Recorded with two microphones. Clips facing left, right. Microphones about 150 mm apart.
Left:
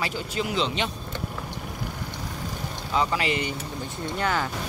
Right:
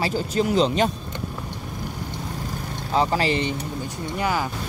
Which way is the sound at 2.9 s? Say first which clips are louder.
Right 4 dB; 35° right (ahead or behind).